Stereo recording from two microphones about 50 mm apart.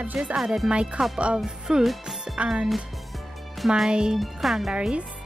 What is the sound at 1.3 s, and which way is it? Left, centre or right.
Speech, centre.